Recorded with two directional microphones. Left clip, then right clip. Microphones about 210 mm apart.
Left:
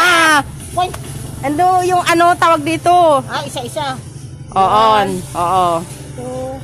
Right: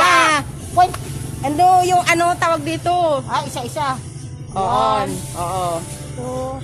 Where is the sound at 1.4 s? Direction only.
15° left (ahead or behind).